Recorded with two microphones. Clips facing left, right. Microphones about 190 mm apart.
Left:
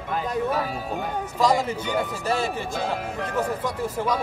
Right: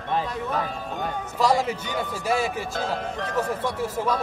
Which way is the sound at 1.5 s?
10° left (ahead or behind).